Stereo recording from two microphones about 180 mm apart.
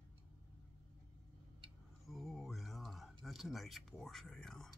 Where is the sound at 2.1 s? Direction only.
Centre (ahead or behind).